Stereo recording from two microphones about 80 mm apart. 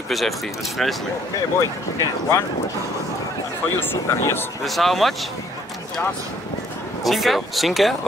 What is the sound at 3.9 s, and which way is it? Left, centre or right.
Speech, left.